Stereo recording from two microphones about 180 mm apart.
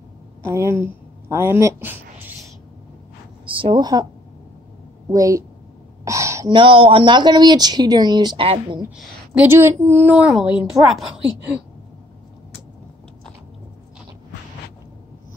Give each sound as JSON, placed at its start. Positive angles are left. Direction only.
{"t": 0.4, "sound": "speech", "side_deg": -15}
{"t": 3.4, "sound": "speech", "side_deg": -30}
{"t": 5.1, "sound": "speech", "side_deg": -20}
{"t": 6.0, "sound": "a sound", "side_deg": -15}
{"t": 6.5, "sound": "speech", "side_deg": -30}
{"t": 9.3, "sound": "a woman's voice", "side_deg": -10}